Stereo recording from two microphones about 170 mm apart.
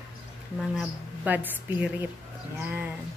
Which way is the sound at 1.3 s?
10° right (ahead or behind).